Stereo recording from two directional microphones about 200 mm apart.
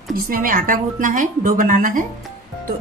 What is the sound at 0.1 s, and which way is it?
A woman's voice, 45° right (ahead or behind).